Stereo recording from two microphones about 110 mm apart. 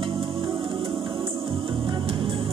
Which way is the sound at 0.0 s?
55° right (ahead or behind).